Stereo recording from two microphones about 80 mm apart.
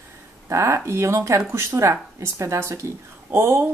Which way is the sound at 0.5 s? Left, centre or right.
Right.